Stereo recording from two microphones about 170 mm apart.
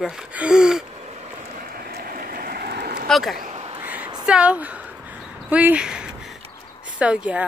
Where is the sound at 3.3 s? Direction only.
50° right (ahead or behind).